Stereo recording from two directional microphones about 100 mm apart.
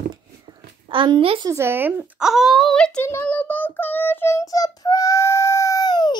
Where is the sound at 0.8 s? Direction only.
55° right (ahead or behind).